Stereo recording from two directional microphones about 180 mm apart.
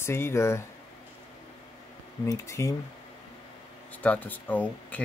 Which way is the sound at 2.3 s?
15° left (ahead or behind).